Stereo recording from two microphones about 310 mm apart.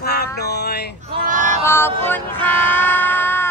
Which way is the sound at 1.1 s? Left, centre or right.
Right.